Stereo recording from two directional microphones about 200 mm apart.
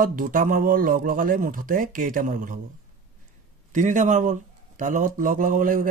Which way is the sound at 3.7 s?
40° right (ahead or behind).